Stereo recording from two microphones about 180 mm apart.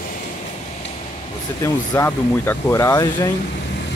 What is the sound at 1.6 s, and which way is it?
Speech, 15° left (ahead or behind).